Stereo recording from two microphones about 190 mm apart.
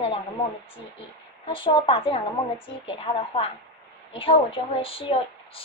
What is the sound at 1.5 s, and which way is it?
A woman's voice, 25° left (ahead or behind).